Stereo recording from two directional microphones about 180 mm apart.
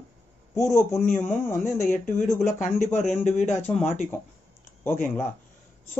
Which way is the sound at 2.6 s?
40° left (ahead or behind).